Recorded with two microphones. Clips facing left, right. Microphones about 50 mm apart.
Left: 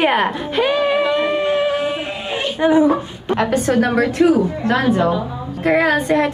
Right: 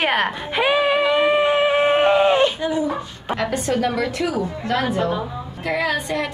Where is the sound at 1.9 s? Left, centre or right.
Right.